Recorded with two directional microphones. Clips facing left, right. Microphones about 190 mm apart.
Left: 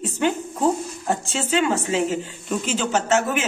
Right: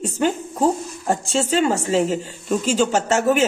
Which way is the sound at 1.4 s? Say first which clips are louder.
Right 2 dB; 40° right (ahead or behind).